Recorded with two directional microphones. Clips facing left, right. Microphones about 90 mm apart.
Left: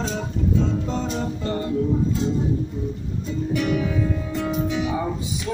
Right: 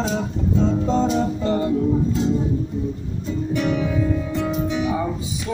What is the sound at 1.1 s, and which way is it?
Music, 25° right (ahead or behind).